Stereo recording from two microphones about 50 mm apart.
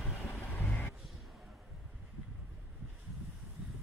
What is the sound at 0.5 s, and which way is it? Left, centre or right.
Music, left.